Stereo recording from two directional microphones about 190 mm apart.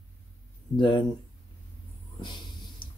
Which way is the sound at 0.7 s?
25° left (ahead or behind).